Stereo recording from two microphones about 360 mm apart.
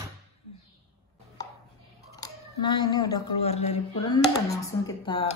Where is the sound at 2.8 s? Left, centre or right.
Centre.